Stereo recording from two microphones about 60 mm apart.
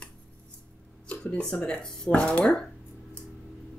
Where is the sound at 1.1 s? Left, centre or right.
Centre.